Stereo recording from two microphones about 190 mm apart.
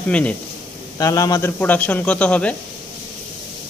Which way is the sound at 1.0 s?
20° left (ahead or behind).